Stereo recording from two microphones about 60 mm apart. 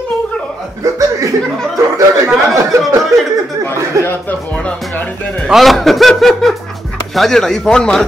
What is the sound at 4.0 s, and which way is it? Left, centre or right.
Speech, left.